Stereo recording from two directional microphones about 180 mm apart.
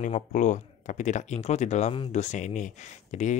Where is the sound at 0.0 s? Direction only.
45° left (ahead or behind).